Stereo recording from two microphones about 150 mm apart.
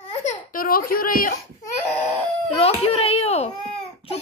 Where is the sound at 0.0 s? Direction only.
45° left (ahead or behind); by 1.3 s 70° left (ahead or behind).